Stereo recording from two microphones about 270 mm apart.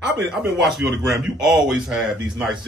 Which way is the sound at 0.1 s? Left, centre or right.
Centre.